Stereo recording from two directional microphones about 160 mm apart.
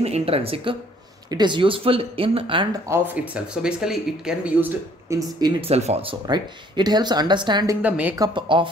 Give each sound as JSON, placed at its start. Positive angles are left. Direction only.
{"t": 0.0, "sound": "speech", "side_deg": -40}
{"t": 3.3, "sound": "speech", "side_deg": -5}
{"t": 5.7, "sound": "speech", "side_deg": -40}
{"t": 6.2, "sound": "speech", "side_deg": -25}
{"t": 7.8, "sound": "speech", "side_deg": -10}
{"t": 8.2, "sound": "speech", "side_deg": -30}